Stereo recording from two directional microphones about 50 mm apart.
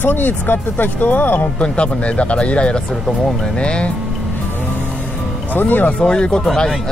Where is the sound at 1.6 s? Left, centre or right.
Left.